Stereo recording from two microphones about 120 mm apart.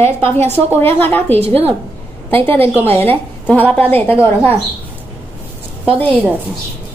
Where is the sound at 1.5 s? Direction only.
55° right (ahead or behind).